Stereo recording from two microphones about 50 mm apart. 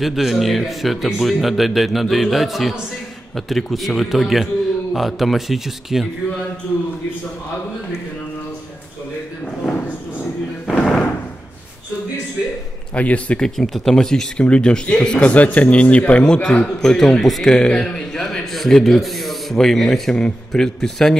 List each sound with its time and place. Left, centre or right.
0.0 s speech: centre
9.6 s a sound: centre
10.8 s slam: centre
12.9 s a man's voice: left
13.4 s a man's voice: centre